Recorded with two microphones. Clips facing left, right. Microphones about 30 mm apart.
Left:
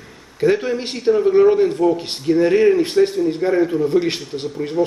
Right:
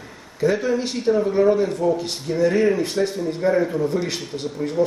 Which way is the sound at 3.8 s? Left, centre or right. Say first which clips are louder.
Left 5 dB; left.